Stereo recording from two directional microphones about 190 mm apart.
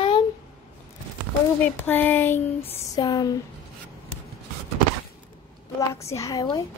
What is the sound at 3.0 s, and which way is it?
Speech, 20° left (ahead or behind).